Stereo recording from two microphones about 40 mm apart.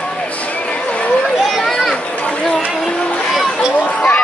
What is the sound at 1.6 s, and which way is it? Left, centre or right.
Children playing, centre.